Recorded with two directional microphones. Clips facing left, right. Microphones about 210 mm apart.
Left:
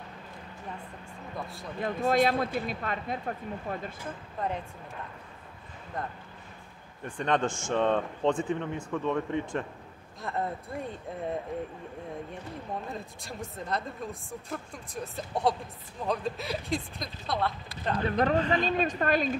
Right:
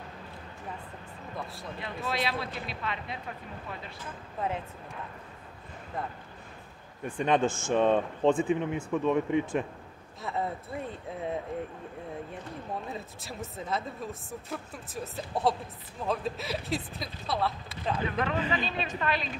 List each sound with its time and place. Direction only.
1.8 s speech: 45° left (ahead or behind)
4.4 s speech: 5° right (ahead or behind)
7.1 s speech: 10° right (ahead or behind)
12.8 s speech: 5° right (ahead or behind)
18.1 s speech: 40° left (ahead or behind)